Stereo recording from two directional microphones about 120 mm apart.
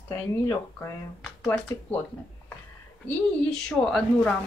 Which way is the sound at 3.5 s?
5° left (ahead or behind).